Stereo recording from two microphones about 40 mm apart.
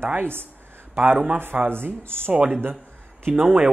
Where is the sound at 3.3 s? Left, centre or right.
Right.